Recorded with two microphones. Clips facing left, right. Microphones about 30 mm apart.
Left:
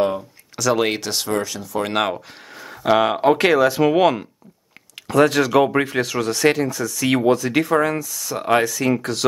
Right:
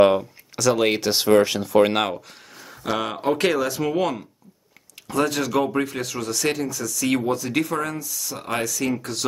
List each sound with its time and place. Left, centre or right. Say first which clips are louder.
0.6 s speech: even; centre
1.0 s speech: right 4 dB; centre
1.3 s speech: right 9 dB; right
1.9 s speech: left 2 dB; centre
2.1 s speech: left 3 dB; left
3.8 s speech: left 7 dB; left
5.7 s speech: left 4 dB; left
5.9 s speech: left 6 dB; left
7.7 s speech: left 8 dB; left
8.0 s speech: left 4 dB; left
8.4 s speech: left 8 dB; left
8.9 s speech: left 6 dB; left